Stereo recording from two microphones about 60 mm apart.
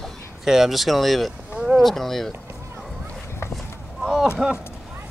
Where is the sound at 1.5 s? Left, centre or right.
Centre.